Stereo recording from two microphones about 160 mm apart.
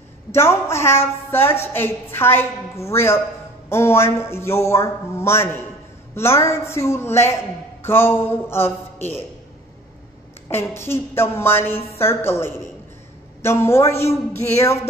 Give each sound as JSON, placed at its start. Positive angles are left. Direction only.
{"t": 0.3, "sound": "a woman's voice", "side_deg": 15}
{"t": 10.5, "sound": "a woman's voice", "side_deg": 15}